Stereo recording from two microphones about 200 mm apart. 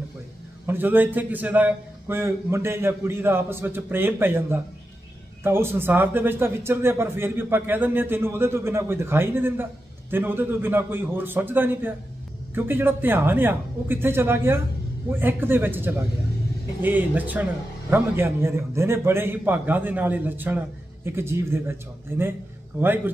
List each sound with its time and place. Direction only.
0.7 s a man's voice: 10° right (ahead or behind)